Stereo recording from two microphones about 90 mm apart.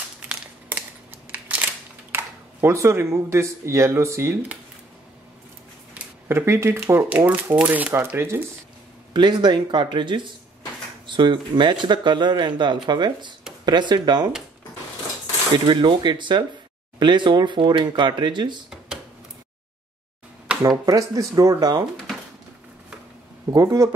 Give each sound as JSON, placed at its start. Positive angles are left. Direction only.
{"t": 0.3, "sound": "a sound", "side_deg": -20}
{"t": 2.1, "sound": "speech", "side_deg": -30}
{"t": 6.2, "sound": "speech", "side_deg": -30}
{"t": 7.2, "sound": "speech", "side_deg": -20}
{"t": 9.1, "sound": "speech", "side_deg": -55}
{"t": 15.5, "sound": "speech", "side_deg": -60}
{"t": 20.8, "sound": "speech", "side_deg": -45}
{"t": 23.5, "sound": "speech", "side_deg": -35}